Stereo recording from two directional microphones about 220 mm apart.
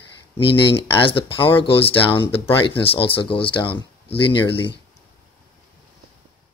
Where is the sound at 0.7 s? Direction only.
25° left (ahead or behind).